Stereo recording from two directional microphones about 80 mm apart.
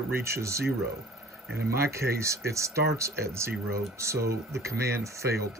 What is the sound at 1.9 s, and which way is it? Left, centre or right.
Speech, right.